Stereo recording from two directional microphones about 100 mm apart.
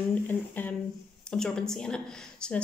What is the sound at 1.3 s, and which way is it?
Speech, 5° left (ahead or behind).